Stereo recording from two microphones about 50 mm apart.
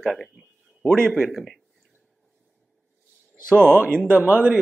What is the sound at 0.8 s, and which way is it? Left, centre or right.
Speech, centre.